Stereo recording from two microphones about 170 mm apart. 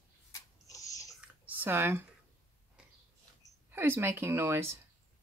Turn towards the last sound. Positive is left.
turn(degrees=-15)  # may be behind; listen again after turning